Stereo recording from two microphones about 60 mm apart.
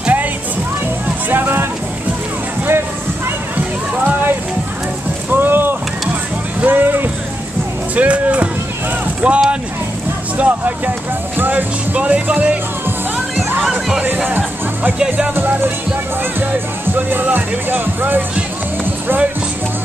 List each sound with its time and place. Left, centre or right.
0.0 s music: right
1.3 s music: right
3.5 s music: right
5.3 s boat: right
6.6 s vehicle: right
7.9 s music: right
9.0 s boat: right
10.3 s speech: right
13.9 s music: right
15.3 s speech: right